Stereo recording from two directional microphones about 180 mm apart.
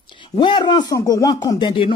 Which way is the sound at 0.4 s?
25° left (ahead or behind).